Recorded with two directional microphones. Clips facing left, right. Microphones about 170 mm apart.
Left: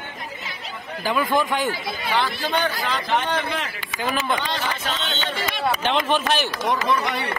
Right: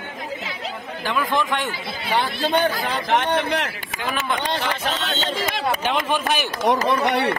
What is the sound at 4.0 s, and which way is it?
Speech, centre (ahead or behind).